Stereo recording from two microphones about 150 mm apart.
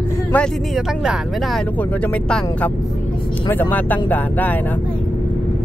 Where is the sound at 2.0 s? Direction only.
10° left (ahead or behind).